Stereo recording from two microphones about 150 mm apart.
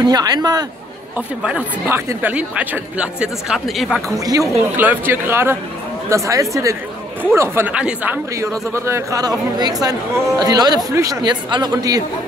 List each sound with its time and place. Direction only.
0.0 s speech: 25° right (ahead or behind)
1.1 s speech: 10° right (ahead or behind)
4.2 s speech: 20° right (ahead or behind)